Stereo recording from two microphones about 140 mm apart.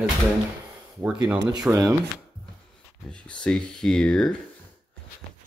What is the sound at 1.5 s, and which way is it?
Speech, 25° right (ahead or behind).